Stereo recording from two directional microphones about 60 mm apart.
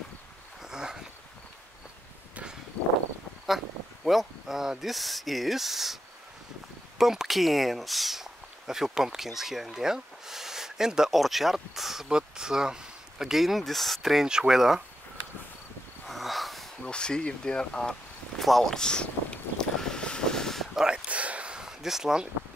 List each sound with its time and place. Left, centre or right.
0.6 s a sound: centre
3.4 s speech: centre
7.0 s speech: centre
14.2 s speech: centre
16.1 s snort: centre
16.8 s speech: centre
18.4 s vehicle: centre
20.7 s a sound: centre
21.1 s a sound: right